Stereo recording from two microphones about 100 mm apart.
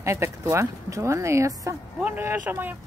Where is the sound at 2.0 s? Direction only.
15° right (ahead or behind).